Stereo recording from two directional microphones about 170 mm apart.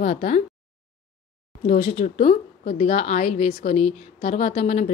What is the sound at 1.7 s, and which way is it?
A woman's voice, 30° left (ahead or behind).